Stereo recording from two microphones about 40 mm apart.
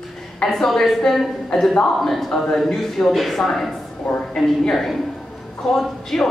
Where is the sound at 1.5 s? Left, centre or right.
Centre.